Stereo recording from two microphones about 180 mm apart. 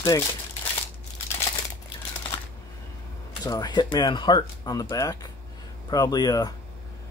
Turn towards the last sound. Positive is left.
turn(degrees=20)  # may be behind; listen again after turning